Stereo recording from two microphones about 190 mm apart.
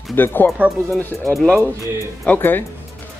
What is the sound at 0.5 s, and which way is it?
Speech, 10° right (ahead or behind).